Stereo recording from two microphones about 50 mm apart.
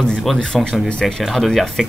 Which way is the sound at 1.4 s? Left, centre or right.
Centre.